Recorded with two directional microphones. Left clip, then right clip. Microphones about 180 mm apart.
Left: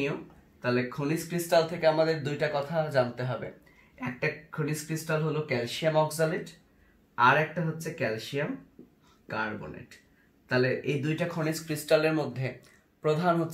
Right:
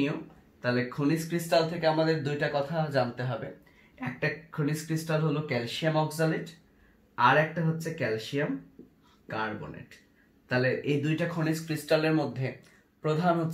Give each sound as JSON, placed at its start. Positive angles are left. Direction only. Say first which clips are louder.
{"t": 0.7, "sound": "speech", "louder": "right 1 dB", "side_deg": 10}
{"t": 7.8, "sound": "speech", "louder": "even", "side_deg": 15}